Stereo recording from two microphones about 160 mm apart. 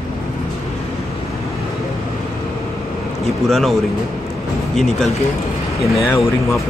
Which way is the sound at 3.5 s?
Centre (ahead or behind).